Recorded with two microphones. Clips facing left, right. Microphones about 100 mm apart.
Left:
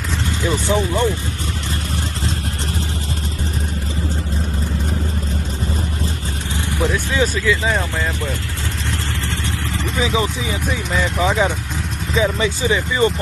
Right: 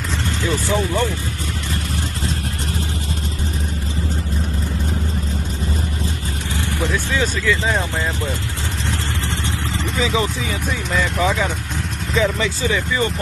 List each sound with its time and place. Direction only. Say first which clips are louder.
0.4 s speech: left 2 dB; 15° left (ahead or behind)
6.5 s speech: left 2 dB; 15° left (ahead or behind)
9.9 s speech: left 1 dB; 15° left (ahead or behind)
10.9 s speech: even; centre (ahead or behind)
12.2 s speech: left 1 dB; 20° left (ahead or behind)